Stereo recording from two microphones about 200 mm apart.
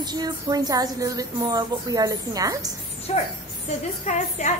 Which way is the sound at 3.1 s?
35° left (ahead or behind).